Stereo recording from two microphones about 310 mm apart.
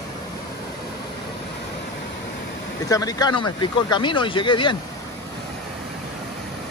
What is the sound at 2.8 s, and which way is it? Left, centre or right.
Speech, centre.